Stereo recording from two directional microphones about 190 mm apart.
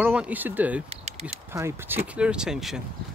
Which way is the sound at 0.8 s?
35° right (ahead or behind).